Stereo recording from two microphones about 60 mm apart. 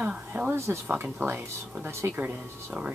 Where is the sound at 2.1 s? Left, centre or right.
Right.